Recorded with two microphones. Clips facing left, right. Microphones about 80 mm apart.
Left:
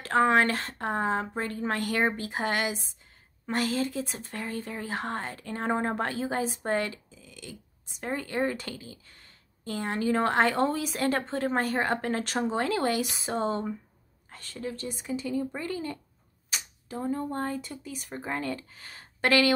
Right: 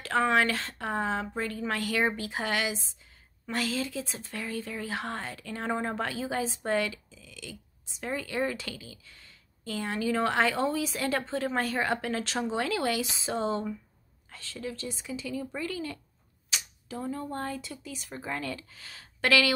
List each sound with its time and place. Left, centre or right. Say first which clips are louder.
0.0 s speech: left 3 dB; left
6.6 s a sound: even; left
8.0 s a woman's voice: left 2 dB; left
14.9 s speech: left 4 dB; left
15.2 s speech: left 2 dB; left
16.5 s cap gun: left 1 dB; left
17.1 s speech: left 4 dB; left
17.6 s speech: left 2 dB; left